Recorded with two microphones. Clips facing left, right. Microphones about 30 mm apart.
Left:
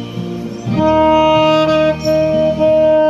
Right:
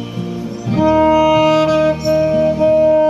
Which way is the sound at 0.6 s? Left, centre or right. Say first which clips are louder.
Left 1 dB; centre.